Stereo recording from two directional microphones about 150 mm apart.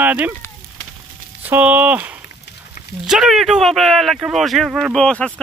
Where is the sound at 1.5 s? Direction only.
10° right (ahead or behind).